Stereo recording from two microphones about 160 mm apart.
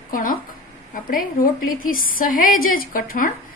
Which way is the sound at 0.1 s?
60° left (ahead or behind).